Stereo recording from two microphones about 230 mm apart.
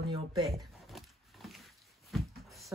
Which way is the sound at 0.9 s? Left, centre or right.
Centre.